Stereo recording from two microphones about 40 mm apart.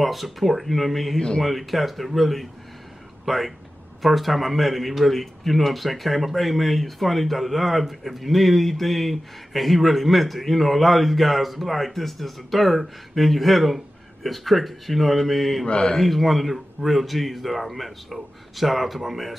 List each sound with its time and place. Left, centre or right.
0.0 s speech: centre
15.6 s mantra: left
15.9 s speech: centre